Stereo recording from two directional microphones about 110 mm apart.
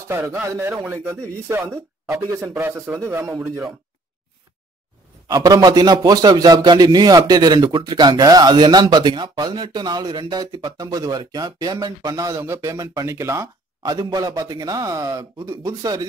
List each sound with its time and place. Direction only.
0.1 s speech: 25° right (ahead or behind)
5.3 s a man's voice: 35° right (ahead or behind)
13.8 s a man's voice: 35° right (ahead or behind)